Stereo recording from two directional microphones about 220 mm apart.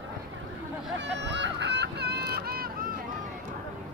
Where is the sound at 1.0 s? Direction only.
50° right (ahead or behind).